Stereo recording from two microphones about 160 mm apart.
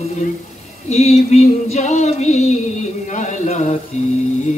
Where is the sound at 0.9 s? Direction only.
45° left (ahead or behind).